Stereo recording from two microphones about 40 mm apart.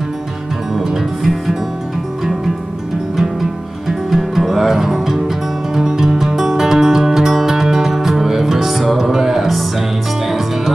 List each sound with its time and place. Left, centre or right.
1.2 s music: centre
4.1 s music: centre